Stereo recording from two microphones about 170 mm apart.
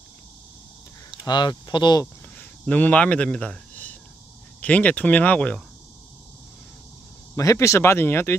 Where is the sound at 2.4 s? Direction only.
10° left (ahead or behind).